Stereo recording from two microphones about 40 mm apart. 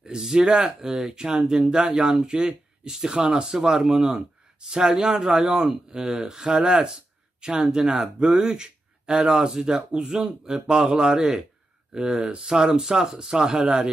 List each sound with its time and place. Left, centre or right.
0.0 s speech: centre
1.0 s speech: right; by 5.9 s centre
5.9 s speech: centre